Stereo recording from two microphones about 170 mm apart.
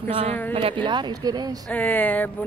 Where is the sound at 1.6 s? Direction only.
10° left (ahead or behind).